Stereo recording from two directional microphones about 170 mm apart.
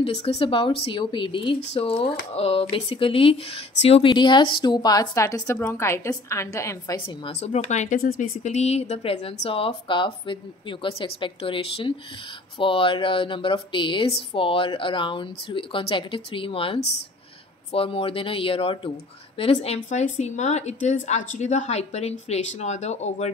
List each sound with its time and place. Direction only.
0.0 s a woman's voice: 40° left (ahead or behind); by 7.0 s 20° left (ahead or behind)
7.2 s speech: 40° left (ahead or behind)
8.0 s speech: 60° left (ahead or behind)
8.4 s speech: 40° left (ahead or behind)